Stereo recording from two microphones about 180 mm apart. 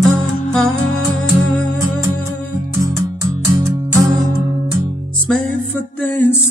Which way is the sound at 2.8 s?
20° right (ahead or behind).